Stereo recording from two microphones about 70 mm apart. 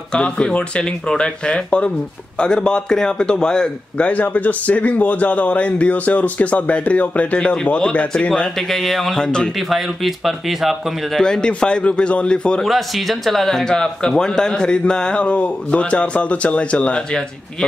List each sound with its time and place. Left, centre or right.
0.1 s speech: centre
4.1 s speech: left
9.6 s speech: centre
11.1 s speech: centre
12.6 s speech: centre